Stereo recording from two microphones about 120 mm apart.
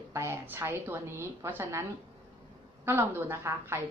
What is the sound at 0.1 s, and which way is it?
A woman's voice, 20° right (ahead or behind).